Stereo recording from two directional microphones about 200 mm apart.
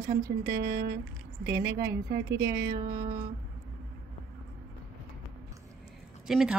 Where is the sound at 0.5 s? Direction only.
55° right (ahead or behind).